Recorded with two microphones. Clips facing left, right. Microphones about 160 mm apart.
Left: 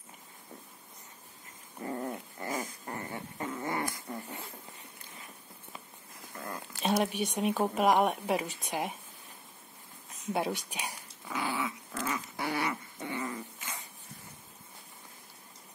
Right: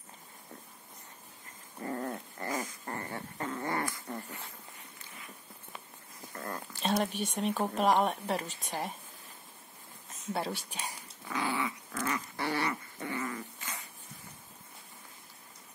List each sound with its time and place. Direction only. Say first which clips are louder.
1.8 s dog: even; 15° left (ahead or behind)
6.4 s speech: left 1 dB; 10° left (ahead or behind)
10.3 s speech: left 3 dB; 15° left (ahead or behind)
11.2 s dog: right 1 dB; 5° left (ahead or behind)